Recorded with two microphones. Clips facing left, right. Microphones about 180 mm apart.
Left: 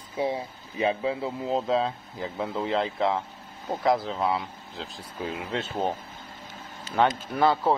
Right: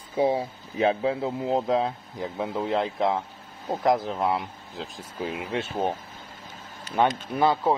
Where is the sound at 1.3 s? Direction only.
15° right (ahead or behind).